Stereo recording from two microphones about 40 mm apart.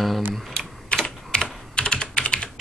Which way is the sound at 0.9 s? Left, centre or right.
Centre.